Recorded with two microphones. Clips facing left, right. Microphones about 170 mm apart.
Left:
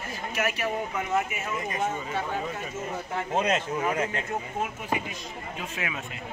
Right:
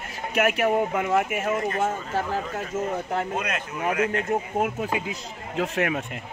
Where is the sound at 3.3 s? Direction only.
25° left (ahead or behind).